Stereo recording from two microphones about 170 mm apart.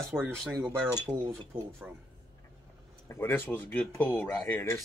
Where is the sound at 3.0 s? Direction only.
15° left (ahead or behind).